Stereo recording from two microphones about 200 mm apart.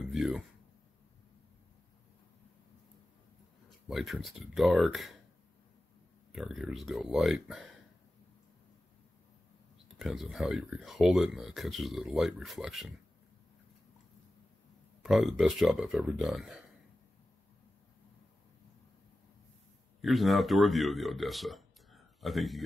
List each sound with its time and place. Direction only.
0.1 s speech: centre (ahead or behind)
3.9 s speech: centre (ahead or behind)
6.3 s speech: centre (ahead or behind)
9.9 s speech: centre (ahead or behind)
15.0 s speech: centre (ahead or behind)
20.0 s speech: centre (ahead or behind)